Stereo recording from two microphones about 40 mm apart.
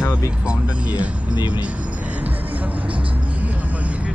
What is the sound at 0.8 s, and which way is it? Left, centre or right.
Speech, right.